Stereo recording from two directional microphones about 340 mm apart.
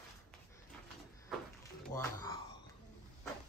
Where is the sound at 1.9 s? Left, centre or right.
Centre.